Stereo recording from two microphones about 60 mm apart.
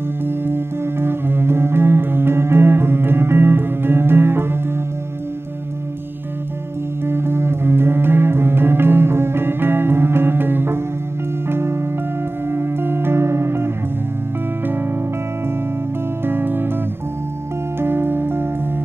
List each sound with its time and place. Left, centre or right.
0.5 s music: right
7.1 s music: right
16.3 s music: right
17.7 s music: right